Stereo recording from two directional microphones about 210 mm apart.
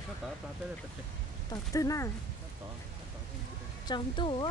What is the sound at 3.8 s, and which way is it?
Speech, 20° left (ahead or behind).